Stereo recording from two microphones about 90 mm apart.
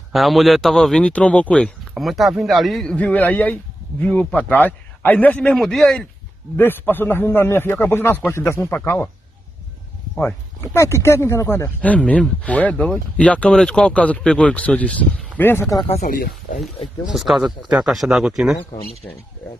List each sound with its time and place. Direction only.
0.1 s speech: centre (ahead or behind)
2.0 s speech: centre (ahead or behind); by 5.5 s 15° left (ahead or behind)
5.5 s speech: 5° left (ahead or behind)
6.5 s speech: 25° left (ahead or behind)
8.7 s speech: 20° left (ahead or behind)
10.6 s speech: 30° left (ahead or behind)
11.8 s speech: 15° left (ahead or behind)
17.1 s speech: 5° right (ahead or behind)